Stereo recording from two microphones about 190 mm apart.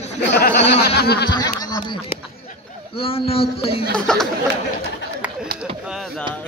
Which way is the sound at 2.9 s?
30° left (ahead or behind).